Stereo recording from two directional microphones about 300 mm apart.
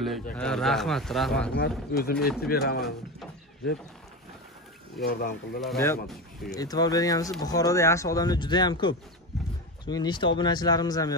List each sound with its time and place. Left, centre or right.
0.0 s speech: centre
1.5 s speech: left
4.9 s speech: left
5.6 s speech: centre